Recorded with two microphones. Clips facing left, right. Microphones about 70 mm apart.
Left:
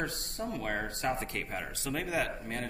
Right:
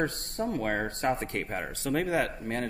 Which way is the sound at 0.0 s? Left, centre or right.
Right.